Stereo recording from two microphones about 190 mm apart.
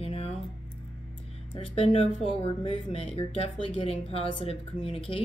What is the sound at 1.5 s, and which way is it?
A woman's voice, 30° left (ahead or behind).